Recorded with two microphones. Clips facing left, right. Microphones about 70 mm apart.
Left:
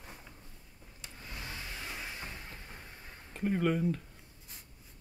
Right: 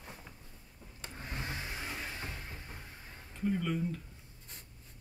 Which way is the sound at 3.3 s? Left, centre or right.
Left.